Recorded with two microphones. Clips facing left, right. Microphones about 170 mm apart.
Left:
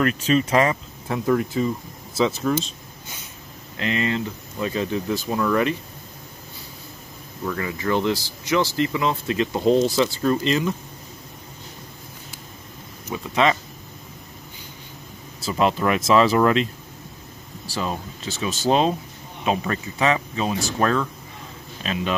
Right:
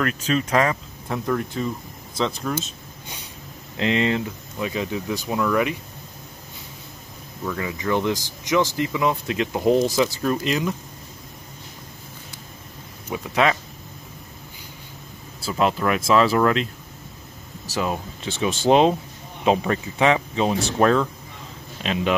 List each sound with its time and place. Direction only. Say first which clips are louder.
0.0 s speech: left 3 dB; 5° left (ahead or behind)
3.7 s speech: right 3 dB; 20° right (ahead or behind)
4.6 s speech: left 2 dB; 10° right (ahead or behind)
7.4 s speech: left 1 dB; 10° right (ahead or behind)
13.1 s speech: even; 5° right (ahead or behind)
15.4 s speech: left 1 dB; centre (ahead or behind)
17.7 s speech: right 2 dB; 15° right (ahead or behind)